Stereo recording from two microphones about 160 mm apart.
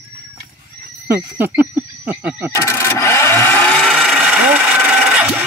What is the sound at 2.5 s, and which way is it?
Wood, 20° left (ahead or behind).